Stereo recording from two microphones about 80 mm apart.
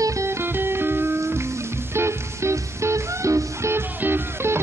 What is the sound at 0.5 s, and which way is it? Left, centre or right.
Music, right.